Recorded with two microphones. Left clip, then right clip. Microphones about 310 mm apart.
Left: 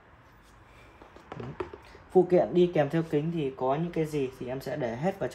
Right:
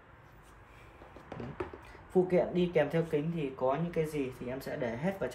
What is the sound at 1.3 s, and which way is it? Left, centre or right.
Tap, centre.